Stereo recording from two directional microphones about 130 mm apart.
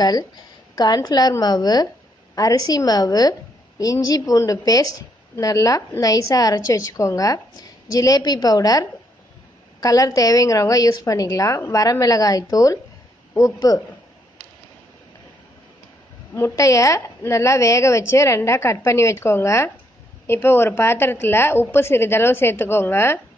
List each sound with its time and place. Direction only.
0.7 s a woman's voice: 30° left (ahead or behind)
16.3 s a woman's voice: 20° left (ahead or behind)